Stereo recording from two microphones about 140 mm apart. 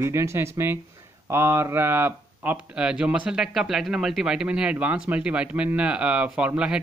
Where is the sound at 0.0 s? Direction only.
20° right (ahead or behind).